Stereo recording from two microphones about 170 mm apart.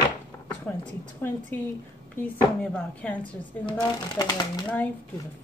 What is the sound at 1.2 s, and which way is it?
Speech, 10° left (ahead or behind).